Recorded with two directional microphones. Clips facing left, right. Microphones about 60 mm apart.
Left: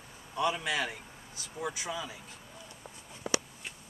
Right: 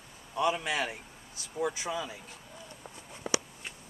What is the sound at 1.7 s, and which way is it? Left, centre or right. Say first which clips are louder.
Speech: right 2 dB; right.